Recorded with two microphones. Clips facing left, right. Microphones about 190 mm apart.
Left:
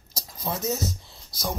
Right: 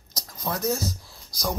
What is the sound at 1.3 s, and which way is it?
Speech, centre (ahead or behind).